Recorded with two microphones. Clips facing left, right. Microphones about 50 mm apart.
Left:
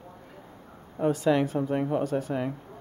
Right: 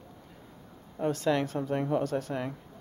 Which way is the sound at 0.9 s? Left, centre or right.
Centre.